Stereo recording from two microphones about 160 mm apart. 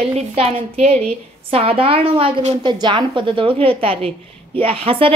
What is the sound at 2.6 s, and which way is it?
A woman's voice, 30° right (ahead or behind).